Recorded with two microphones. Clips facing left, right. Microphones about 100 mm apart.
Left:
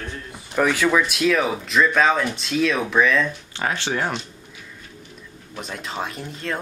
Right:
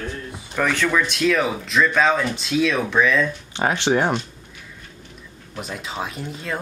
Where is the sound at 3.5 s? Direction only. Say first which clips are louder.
Right 5 dB; 20° right (ahead or behind).